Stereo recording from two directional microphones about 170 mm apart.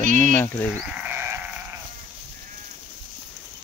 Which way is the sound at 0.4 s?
10° left (ahead or behind).